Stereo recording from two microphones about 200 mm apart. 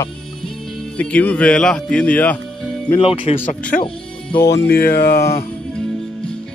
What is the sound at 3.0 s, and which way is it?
Speech, 30° left (ahead or behind).